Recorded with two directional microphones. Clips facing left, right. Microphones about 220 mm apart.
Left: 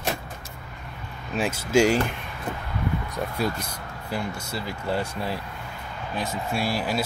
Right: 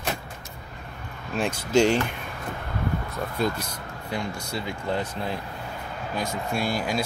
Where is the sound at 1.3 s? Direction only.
5° left (ahead or behind).